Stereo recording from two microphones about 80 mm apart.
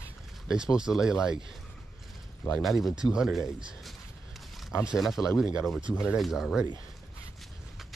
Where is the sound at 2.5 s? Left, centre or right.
Centre.